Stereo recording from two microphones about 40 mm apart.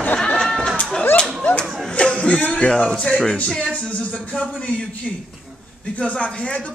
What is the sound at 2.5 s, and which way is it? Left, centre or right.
Speech, left.